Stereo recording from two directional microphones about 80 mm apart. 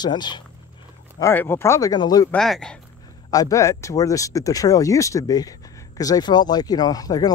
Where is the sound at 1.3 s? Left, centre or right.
Left.